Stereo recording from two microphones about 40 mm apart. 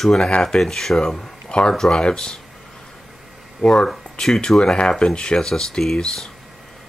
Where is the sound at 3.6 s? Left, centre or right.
Centre.